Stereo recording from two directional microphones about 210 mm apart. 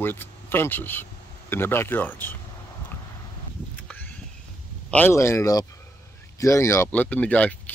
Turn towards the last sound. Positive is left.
turn(degrees=5)  # may be behind; listen again after turning